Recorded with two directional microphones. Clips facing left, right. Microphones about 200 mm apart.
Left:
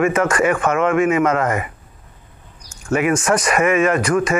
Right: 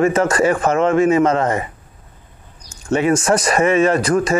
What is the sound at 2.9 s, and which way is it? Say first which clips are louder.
A man's voice: right 2 dB; 30° right (ahead or behind).